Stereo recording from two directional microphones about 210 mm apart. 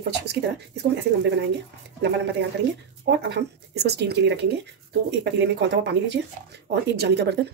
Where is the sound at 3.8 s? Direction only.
50° right (ahead or behind).